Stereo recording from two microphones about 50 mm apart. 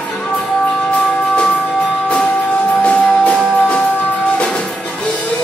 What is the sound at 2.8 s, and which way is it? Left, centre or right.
Music, left.